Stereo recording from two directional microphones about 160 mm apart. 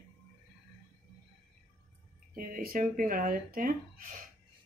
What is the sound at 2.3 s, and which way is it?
Speech, 65° right (ahead or behind).